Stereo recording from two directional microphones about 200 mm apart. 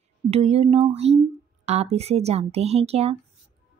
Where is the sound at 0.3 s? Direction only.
30° right (ahead or behind).